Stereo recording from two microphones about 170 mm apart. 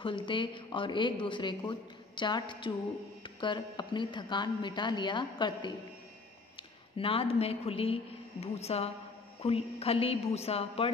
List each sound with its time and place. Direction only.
0.0 s speech: 30° left (ahead or behind)
7.0 s speech: 35° left (ahead or behind)